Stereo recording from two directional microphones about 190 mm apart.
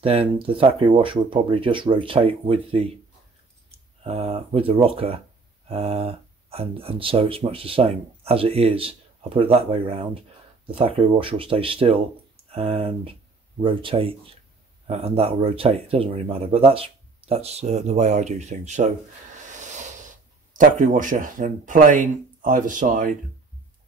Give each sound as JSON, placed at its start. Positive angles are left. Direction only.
{"t": 0.0, "sound": "speech", "side_deg": -30}
{"t": 19.3, "sound": "a sound", "side_deg": -40}
{"t": 20.5, "sound": "speech", "side_deg": -45}